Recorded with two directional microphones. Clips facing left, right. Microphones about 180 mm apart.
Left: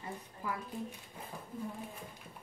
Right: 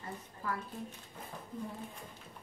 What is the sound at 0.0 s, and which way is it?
Speech, 15° left (ahead or behind).